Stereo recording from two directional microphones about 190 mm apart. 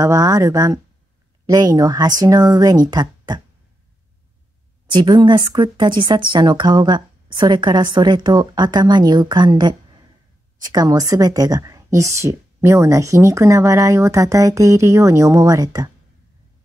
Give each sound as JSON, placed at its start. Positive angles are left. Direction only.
{"t": 0.0, "sound": "a woman's voice", "side_deg": -20}
{"t": 4.9, "sound": "a woman's voice", "side_deg": -25}